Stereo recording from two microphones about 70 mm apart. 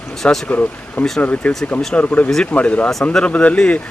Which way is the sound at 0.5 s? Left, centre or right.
Left.